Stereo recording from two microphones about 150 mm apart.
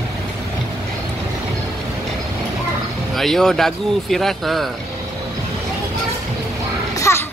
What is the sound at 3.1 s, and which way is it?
Speech, centre (ahead or behind).